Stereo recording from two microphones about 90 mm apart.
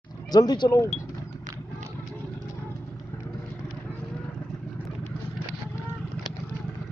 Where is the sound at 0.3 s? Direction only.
50° left (ahead or behind).